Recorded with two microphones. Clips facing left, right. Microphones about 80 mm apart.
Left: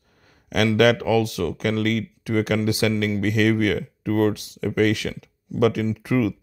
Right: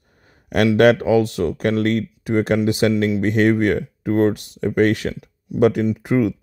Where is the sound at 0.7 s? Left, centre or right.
Right.